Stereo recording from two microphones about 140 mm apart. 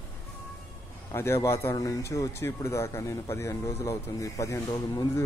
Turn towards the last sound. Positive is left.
turn(degrees=25)  # may be behind; listen again after turning